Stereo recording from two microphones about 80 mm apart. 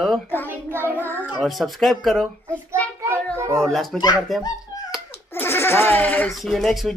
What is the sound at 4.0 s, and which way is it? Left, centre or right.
Speech, left.